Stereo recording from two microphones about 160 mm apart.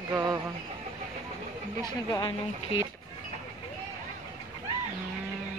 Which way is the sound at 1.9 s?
30° left (ahead or behind).